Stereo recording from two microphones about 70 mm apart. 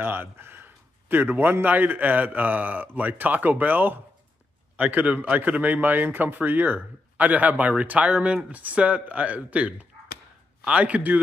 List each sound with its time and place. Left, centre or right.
0.0 s a man's voice: right